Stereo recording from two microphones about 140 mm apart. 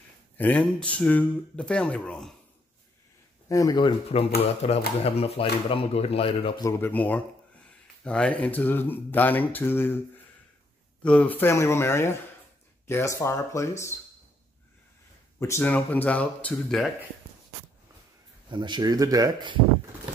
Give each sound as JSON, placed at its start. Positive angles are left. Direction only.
{"t": 0.4, "sound": "speech", "side_deg": 10}
{"t": 3.4, "sound": "speech", "side_deg": 25}
{"t": 3.8, "sound": "speech", "side_deg": 45}
{"t": 6.6, "sound": "speech", "side_deg": 15}
{"t": 11.0, "sound": "speech", "side_deg": 10}
{"t": 15.3, "sound": "speech", "side_deg": 20}
{"t": 18.5, "sound": "speech", "side_deg": -30}